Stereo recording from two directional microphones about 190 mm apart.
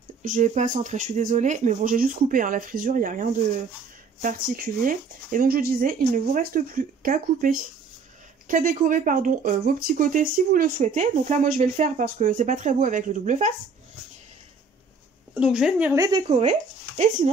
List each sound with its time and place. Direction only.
0.2 s speech: 40° right (ahead or behind)
15.3 s speech: 5° right (ahead or behind)
15.9 s speech: 20° right (ahead or behind)